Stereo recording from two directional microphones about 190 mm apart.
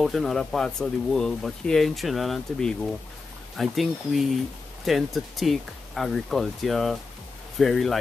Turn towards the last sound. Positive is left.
turn(degrees=0)  # may be behind; listen again after turning